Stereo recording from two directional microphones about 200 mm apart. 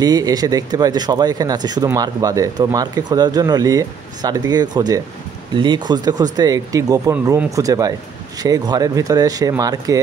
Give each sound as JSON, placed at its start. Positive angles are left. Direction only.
{"t": 0.0, "sound": "speech", "side_deg": -20}